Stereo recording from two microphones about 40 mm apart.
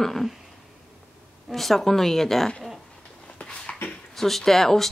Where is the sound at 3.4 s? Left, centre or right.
Left.